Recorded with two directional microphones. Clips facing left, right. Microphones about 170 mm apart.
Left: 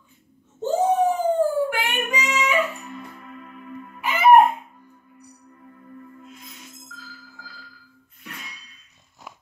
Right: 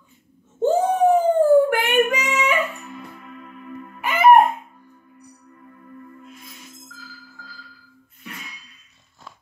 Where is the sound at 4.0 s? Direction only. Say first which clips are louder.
Right 3 dB; 50° right (ahead or behind).